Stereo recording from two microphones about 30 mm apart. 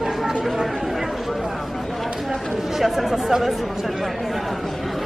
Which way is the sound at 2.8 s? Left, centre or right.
Centre.